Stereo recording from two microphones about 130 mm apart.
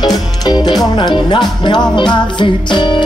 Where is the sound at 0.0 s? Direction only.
30° left (ahead or behind).